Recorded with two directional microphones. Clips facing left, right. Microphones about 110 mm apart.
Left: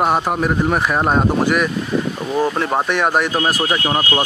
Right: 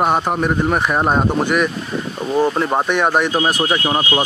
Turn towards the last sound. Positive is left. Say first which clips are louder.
# right 1 dB
turn(degrees=-10)  # may be behind; listen again after turning